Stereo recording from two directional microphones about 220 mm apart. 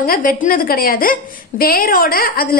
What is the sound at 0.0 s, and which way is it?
A woman's voice, 40° left (ahead or behind).